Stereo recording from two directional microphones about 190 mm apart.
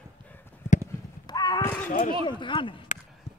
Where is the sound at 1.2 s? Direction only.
20° left (ahead or behind).